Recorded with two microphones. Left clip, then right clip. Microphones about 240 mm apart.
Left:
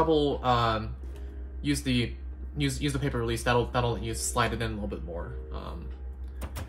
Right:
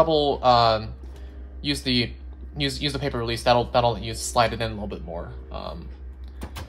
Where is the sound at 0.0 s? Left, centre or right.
Right.